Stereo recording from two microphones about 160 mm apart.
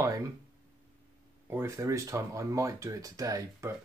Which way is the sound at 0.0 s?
20° right (ahead or behind).